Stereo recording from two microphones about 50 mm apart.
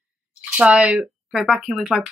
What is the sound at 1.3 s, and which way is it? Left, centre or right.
Speech, centre.